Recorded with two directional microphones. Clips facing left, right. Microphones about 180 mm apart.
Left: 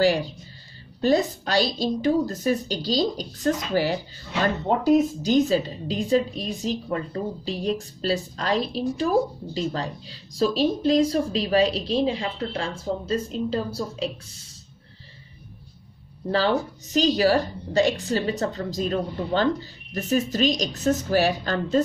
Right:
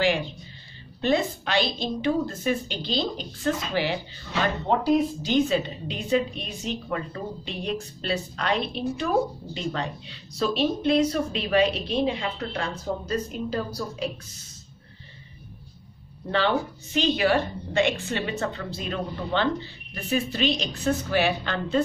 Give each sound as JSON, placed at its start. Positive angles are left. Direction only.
{"t": 0.0, "sound": "a woman's voice", "side_deg": 40}
{"t": 16.3, "sound": "a woman's voice", "side_deg": 35}